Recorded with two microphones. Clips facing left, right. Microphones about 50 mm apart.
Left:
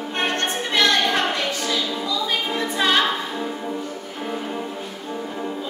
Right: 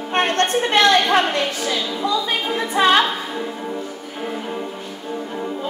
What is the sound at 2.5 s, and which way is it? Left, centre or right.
Speech, centre.